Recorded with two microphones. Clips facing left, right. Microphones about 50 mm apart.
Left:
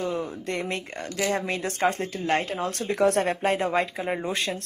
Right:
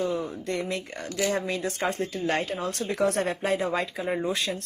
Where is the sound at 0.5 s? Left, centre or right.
Left.